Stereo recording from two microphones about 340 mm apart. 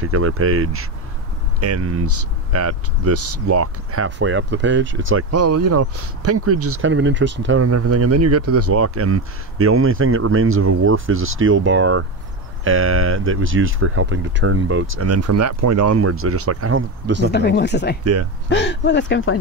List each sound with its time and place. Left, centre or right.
0.0 s speech: right
17.3 s speech: left